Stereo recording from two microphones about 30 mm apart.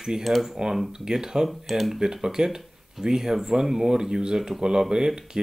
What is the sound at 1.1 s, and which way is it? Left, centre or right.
Speech, centre.